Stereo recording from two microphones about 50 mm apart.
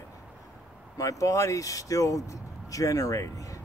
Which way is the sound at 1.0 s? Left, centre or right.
Left.